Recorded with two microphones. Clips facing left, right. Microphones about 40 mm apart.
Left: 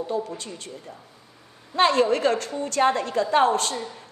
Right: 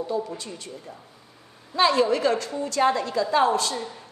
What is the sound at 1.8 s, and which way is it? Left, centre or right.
A woman's voice, left.